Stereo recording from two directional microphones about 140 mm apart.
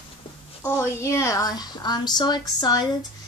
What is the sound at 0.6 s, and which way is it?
A woman's voice, 15° left (ahead or behind).